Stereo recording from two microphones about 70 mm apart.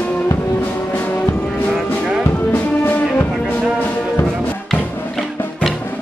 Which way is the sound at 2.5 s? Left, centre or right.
Left.